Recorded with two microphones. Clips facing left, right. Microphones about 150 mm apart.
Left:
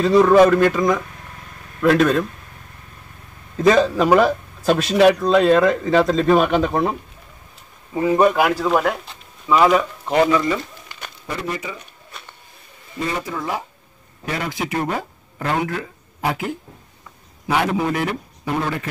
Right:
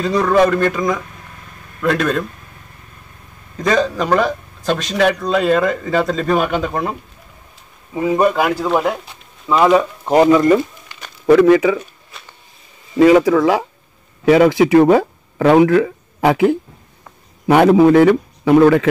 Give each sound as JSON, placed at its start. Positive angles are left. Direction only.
{"t": 0.0, "sound": "speech", "side_deg": 5}
{"t": 3.5, "sound": "speech", "side_deg": 5}
{"t": 8.3, "sound": "speech", "side_deg": 0}
{"t": 10.0, "sound": "speech", "side_deg": -40}
{"t": 11.2, "sound": "speech", "side_deg": -85}
{"t": 12.9, "sound": "speech", "side_deg": -90}
{"t": 14.2, "sound": "speech", "side_deg": -70}
{"t": 17.5, "sound": "speech", "side_deg": -55}
{"t": 17.7, "sound": "speech", "side_deg": -65}